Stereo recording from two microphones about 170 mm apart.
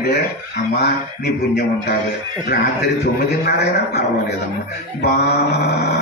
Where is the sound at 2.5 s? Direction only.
65° left (ahead or behind).